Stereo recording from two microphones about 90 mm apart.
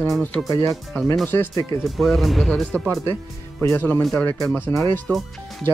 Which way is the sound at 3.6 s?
25° left (ahead or behind).